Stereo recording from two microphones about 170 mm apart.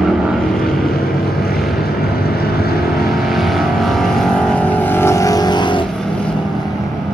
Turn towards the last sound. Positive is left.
turn(degrees=25)  # may be behind; listen again after turning